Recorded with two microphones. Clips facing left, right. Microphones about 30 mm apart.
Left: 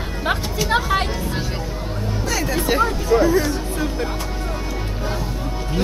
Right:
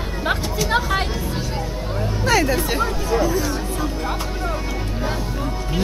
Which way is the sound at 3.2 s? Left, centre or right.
Centre.